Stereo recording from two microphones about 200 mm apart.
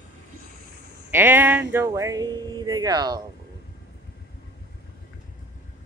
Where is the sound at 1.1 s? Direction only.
10° right (ahead or behind).